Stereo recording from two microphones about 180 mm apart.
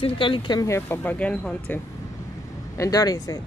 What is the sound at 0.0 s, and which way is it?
Speech, 30° left (ahead or behind).